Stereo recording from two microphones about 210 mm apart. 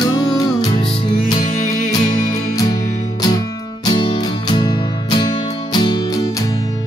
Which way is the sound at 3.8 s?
20° left (ahead or behind).